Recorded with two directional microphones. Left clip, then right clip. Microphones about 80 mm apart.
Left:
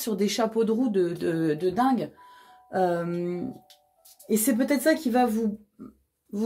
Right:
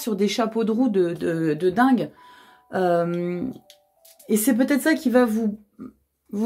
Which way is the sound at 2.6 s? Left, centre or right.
Right.